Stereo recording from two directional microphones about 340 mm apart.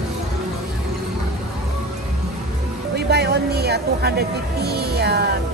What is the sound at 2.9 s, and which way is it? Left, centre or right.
Music, right.